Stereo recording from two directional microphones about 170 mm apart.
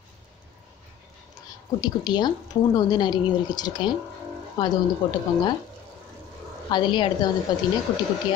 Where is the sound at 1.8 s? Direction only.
25° left (ahead or behind).